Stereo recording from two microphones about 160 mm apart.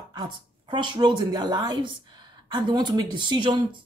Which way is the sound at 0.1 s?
30° right (ahead or behind).